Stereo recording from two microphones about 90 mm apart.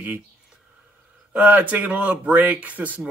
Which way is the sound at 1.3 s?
15° right (ahead or behind).